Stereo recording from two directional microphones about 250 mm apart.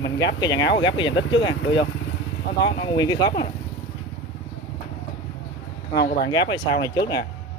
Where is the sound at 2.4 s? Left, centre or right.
Left.